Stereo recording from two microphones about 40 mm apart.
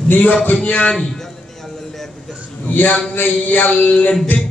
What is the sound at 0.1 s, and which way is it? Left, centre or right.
Speech, left.